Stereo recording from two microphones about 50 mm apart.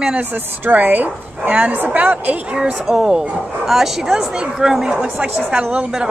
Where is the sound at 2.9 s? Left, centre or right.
Centre.